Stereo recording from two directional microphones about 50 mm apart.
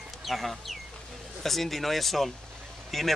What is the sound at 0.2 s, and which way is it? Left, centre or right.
Speech, centre.